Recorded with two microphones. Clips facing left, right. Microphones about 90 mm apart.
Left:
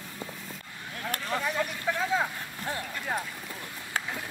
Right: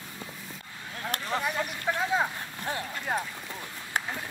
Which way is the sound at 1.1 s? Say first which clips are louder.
Even; 15° right (ahead or behind).